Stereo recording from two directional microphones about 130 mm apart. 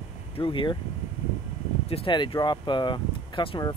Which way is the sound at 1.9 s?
40° left (ahead or behind).